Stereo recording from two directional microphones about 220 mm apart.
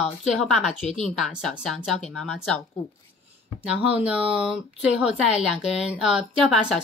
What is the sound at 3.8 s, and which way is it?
A woman's voice, 5° right (ahead or behind).